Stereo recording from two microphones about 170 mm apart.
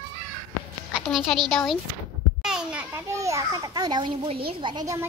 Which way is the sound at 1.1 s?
Centre (ahead or behind).